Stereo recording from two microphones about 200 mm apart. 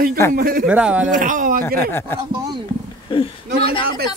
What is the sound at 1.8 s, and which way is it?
Speech, 10° left (ahead or behind).